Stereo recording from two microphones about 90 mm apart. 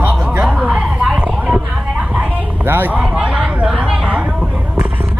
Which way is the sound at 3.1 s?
10° right (ahead or behind).